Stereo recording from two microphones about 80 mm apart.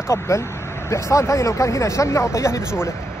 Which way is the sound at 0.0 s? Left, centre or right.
Left.